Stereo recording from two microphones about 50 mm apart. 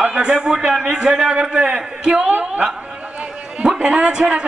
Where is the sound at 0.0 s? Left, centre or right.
Centre.